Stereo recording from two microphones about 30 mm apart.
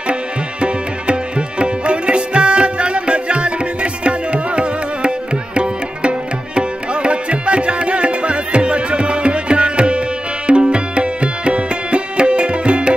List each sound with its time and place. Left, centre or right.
0.1 s tabla: right
1.6 s music: right